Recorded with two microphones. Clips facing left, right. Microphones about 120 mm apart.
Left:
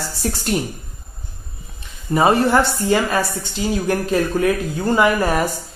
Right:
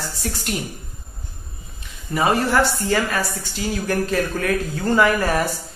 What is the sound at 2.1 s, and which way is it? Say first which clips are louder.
A woman's voice: left 4 dB; 25° left (ahead or behind).